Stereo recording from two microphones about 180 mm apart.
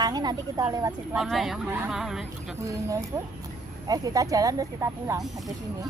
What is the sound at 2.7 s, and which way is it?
A woman's voice, 20° right (ahead or behind).